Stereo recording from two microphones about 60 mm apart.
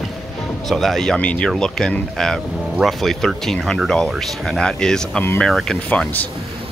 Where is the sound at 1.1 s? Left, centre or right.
Centre.